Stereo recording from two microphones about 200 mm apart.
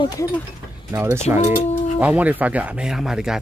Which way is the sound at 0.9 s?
15° right (ahead or behind).